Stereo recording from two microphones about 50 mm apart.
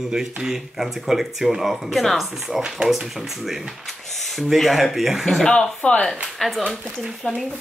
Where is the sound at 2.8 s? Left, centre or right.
Centre.